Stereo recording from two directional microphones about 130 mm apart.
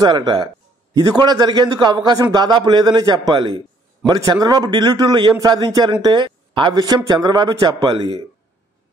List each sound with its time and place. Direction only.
0.0 s a man's voice: 35° right (ahead or behind)